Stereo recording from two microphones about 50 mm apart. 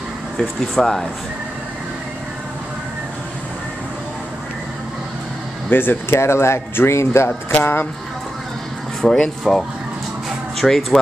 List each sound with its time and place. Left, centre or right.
0.4 s speech: centre
5.7 s speech: left
6.1 s speech: left
7.2 s speech: left
9.0 s speech: centre